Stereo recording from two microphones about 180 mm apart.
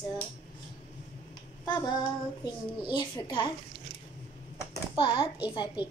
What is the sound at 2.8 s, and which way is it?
Speech, 25° left (ahead or behind).